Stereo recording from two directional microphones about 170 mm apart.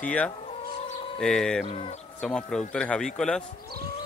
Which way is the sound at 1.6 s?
30° left (ahead or behind).